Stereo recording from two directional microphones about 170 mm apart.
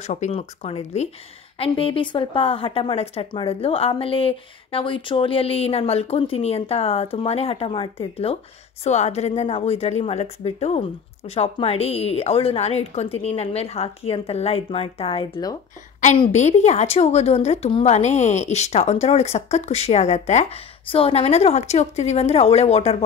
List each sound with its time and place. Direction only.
0.0 s speech: 40° left (ahead or behind)